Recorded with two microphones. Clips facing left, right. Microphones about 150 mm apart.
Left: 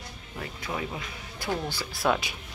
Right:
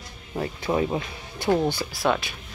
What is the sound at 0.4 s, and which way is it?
Speech, 30° right (ahead or behind).